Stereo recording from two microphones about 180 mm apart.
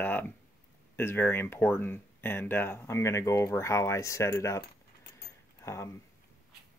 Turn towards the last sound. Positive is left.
turn(degrees=15)  # may be behind; listen again after turning